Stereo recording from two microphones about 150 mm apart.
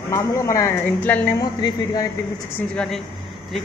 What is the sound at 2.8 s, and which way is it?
Speech, centre (ahead or behind).